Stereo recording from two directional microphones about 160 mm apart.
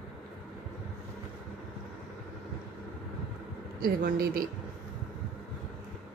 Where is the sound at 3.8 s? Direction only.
65° right (ahead or behind).